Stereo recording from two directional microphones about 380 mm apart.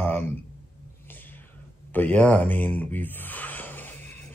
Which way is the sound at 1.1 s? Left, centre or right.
Centre.